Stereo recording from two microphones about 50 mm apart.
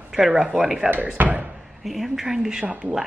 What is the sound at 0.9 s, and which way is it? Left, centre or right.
Speech, right.